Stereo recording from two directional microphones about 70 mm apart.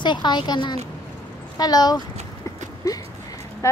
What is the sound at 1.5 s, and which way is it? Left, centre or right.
Speech, left.